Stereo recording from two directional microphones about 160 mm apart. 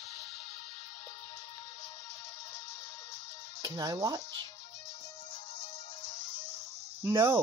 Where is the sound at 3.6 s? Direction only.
25° right (ahead or behind).